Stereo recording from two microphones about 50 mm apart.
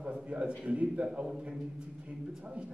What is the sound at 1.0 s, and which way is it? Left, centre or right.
A man's voice, centre.